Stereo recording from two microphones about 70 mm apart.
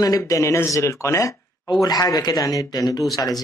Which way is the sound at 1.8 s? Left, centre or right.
Left.